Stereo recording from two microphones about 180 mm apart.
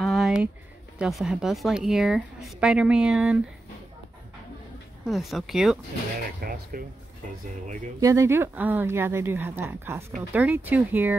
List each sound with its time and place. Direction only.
0.0 s a sound: centre (ahead or behind)
0.9 s speech: 5° right (ahead or behind)
5.0 s speech: centre (ahead or behind)
6.4 s speech: 55° right (ahead or behind)
8.0 s speech: 15° right (ahead or behind)